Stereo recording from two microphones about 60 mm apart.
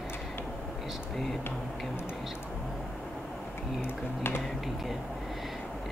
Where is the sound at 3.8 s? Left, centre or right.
Left.